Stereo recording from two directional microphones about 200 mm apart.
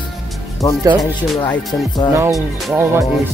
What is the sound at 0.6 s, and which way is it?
Speech, 15° left (ahead or behind).